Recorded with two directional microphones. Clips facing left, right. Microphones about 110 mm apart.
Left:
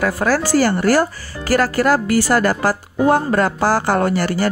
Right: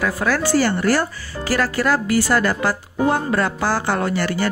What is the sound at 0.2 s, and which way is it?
Speech, 40° left (ahead or behind).